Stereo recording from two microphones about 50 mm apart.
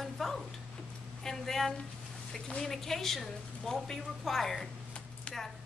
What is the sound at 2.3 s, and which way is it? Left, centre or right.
A woman's voice, centre.